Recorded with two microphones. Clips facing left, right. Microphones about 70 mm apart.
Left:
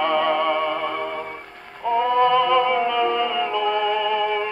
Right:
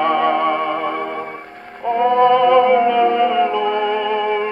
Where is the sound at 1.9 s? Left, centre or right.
Right.